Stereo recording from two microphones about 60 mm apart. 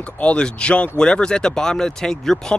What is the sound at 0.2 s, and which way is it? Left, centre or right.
Speech, centre.